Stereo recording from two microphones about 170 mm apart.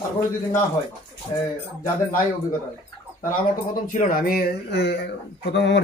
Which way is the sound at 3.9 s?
55° left (ahead or behind).